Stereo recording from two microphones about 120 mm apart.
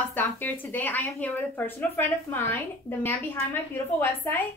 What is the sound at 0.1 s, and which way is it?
A woman's voice, 15° left (ahead or behind).